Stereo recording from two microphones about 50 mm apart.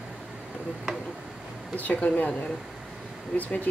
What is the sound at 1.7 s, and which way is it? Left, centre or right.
Speech, left.